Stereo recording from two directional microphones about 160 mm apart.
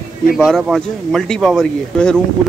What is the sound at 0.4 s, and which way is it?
Speech, centre (ahead or behind).